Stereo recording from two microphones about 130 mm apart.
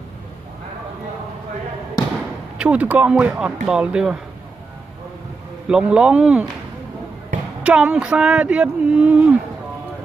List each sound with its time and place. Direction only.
2.6 s speech: 10° right (ahead or behind)
5.7 s speech: 5° right (ahead or behind)
7.6 s speech: 10° right (ahead or behind)